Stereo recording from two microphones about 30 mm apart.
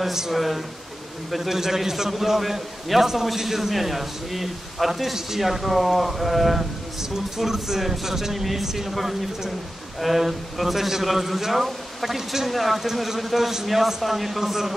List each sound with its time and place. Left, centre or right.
0.0 s a man's voice: centre
0.3 s a man's voice: centre
7.0 s a man's voice: centre